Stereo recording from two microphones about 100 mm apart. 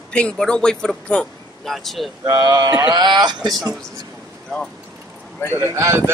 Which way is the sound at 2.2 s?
45° right (ahead or behind).